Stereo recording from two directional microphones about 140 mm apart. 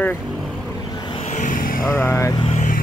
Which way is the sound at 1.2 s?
65° left (ahead or behind).